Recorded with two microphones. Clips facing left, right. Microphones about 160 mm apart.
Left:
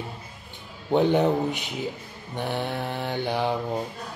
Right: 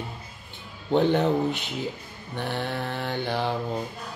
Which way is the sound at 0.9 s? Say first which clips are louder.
Left 1 dB; 10° left (ahead or behind).